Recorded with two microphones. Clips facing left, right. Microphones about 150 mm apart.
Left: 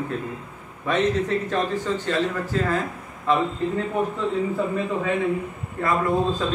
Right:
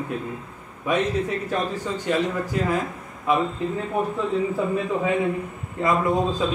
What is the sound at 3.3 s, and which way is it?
Speech, 10° right (ahead or behind).